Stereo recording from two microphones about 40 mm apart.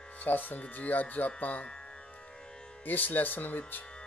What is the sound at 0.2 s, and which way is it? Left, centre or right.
Speech, left.